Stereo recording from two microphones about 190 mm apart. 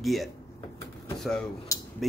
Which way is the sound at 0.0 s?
Centre (ahead or behind).